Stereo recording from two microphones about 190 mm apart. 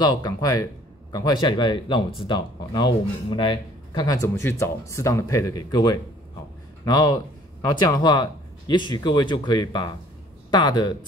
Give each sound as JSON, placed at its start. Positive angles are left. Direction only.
{"t": 0.0, "sound": "speech", "side_deg": 20}